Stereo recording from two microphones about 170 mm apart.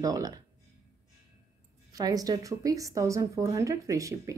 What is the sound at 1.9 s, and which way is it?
A woman's voice, 20° right (ahead or behind).